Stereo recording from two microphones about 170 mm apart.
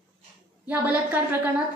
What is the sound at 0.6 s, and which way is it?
A woman's voice, 10° right (ahead or behind).